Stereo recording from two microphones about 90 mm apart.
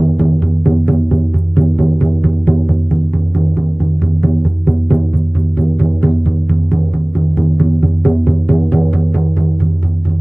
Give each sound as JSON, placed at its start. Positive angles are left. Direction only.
{"t": 0.2, "sound": "music", "side_deg": 15}
{"t": 7.3, "sound": "music", "side_deg": 15}